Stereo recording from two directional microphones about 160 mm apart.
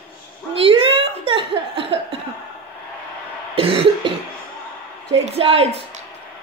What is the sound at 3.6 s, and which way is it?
Cough, 35° right (ahead or behind).